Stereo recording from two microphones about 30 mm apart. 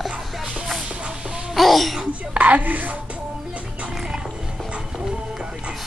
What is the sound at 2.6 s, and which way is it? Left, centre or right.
Speech, right.